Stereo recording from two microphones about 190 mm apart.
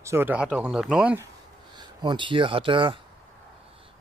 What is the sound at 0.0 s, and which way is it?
Speech, 10° right (ahead or behind).